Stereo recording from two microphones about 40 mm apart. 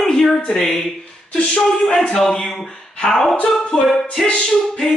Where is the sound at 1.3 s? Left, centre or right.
Left.